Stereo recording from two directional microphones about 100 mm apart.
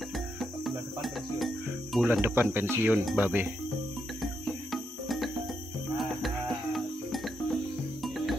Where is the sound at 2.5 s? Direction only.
20° right (ahead or behind).